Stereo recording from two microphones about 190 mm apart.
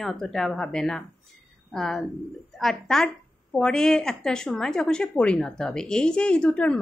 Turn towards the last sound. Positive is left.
turn(degrees=5)  # may be behind; listen again after turning